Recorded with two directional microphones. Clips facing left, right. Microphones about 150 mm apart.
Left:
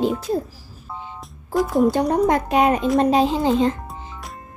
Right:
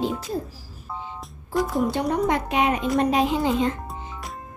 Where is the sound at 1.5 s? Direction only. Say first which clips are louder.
Left 5 dB; centre (ahead or behind).